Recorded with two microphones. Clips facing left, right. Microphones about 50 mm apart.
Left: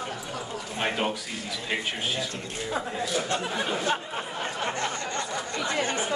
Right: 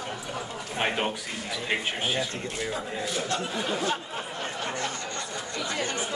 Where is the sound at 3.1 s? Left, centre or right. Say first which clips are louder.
Left 1 dB; left.